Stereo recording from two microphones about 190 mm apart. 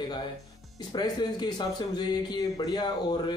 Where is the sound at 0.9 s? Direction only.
20° left (ahead or behind).